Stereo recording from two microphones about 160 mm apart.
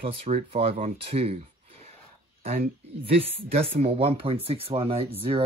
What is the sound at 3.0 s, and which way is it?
Speech, 35° right (ahead or behind).